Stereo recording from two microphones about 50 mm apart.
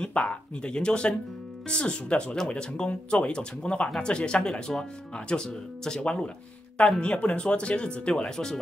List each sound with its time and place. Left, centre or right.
0.0 s speech: left